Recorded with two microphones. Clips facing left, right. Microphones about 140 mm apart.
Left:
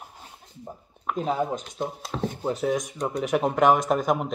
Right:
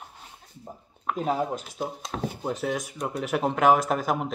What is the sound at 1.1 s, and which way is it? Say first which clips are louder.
Speech: left 1 dB; centre (ahead or behind).